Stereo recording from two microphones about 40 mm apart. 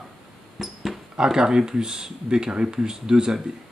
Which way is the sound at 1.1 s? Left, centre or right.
Centre.